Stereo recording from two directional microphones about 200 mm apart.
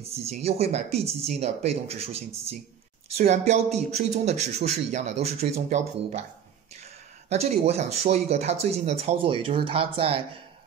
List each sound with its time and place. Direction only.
0.0 s speech: 30° right (ahead or behind)
7.2 s speech: 30° right (ahead or behind)